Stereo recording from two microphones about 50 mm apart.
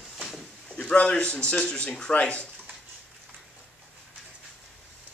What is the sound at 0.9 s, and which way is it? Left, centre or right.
A man's voice, left.